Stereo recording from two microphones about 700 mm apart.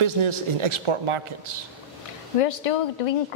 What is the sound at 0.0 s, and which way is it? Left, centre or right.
A man's voice, right.